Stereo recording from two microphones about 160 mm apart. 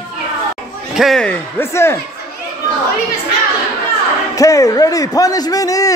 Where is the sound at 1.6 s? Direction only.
15° left (ahead or behind).